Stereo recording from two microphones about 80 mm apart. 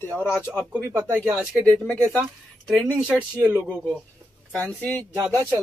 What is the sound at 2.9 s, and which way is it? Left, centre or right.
Speech, centre.